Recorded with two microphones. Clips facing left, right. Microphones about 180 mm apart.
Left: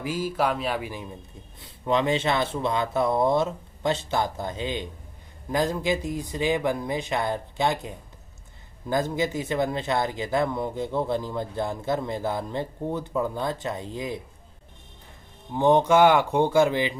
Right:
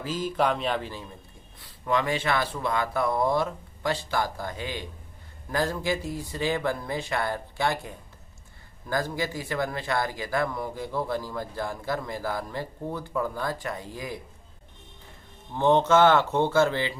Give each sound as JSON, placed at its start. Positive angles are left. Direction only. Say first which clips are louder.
{"t": 0.0, "sound": "speech", "louder": "even", "side_deg": 10}
{"t": 1.6, "sound": "speech", "louder": "left 3 dB", "side_deg": 20}
{"t": 15.5, "sound": "speech", "louder": "left 2 dB", "side_deg": 15}